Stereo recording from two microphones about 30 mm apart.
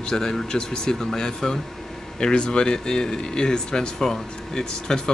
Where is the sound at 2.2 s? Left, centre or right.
Left.